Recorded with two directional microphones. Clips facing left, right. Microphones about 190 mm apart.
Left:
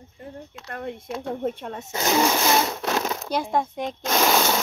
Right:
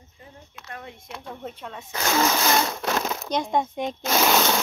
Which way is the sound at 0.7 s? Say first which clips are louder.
Left 7 dB; 55° left (ahead or behind).